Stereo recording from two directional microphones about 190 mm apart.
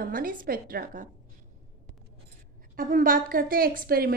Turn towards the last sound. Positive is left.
turn(degrees=-50)  # may be behind; listen again after turning